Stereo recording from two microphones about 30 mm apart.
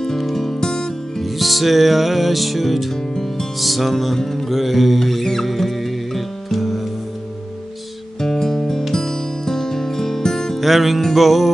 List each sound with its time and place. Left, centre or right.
0.2 s music: centre
1.2 s music: centre
2.9 s music: centre
3.5 s music: centre
4.2 s music: centre
4.5 s music: centre
8.2 s music: centre
10.6 s music: centre